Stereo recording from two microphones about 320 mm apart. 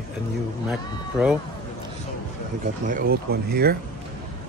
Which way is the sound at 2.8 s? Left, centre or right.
Right.